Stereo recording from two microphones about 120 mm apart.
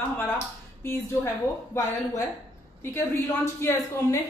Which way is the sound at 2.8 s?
25° left (ahead or behind).